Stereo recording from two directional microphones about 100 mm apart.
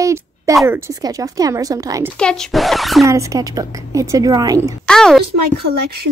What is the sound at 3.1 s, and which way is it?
Speech, 35° right (ahead or behind).